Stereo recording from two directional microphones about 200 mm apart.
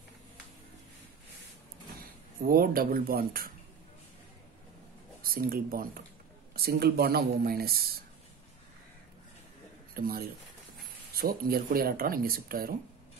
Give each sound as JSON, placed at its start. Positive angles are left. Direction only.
{"t": 2.0, "sound": "speech", "side_deg": -45}
{"t": 5.2, "sound": "speech", "side_deg": -45}
{"t": 9.9, "sound": "speech", "side_deg": -50}